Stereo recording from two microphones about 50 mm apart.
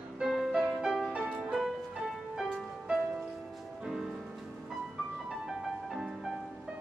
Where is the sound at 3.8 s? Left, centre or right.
Centre.